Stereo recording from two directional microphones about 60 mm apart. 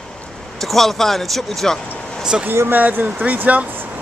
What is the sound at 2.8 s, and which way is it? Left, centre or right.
Speech, right.